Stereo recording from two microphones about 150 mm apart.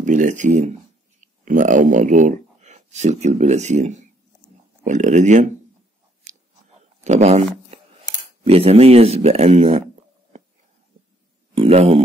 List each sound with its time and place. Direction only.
0.0 s speech: 55° right (ahead or behind)
6.3 s chewing: 55° right (ahead or behind)
7.1 s speech: 50° right (ahead or behind)
11.5 s speech: 40° right (ahead or behind)